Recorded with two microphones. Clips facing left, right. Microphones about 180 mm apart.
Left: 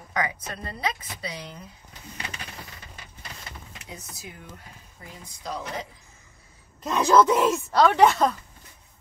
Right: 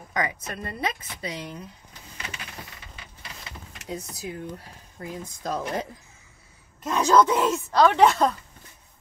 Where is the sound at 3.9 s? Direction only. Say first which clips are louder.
Right 9 dB; 35° right (ahead or behind).